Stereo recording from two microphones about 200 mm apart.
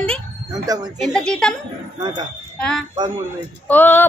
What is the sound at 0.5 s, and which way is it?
Speech, 20° right (ahead or behind).